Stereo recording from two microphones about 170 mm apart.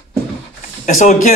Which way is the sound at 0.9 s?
50° left (ahead or behind).